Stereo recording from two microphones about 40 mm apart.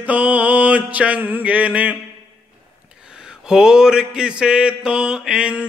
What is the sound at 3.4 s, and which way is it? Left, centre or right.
Mantra, centre.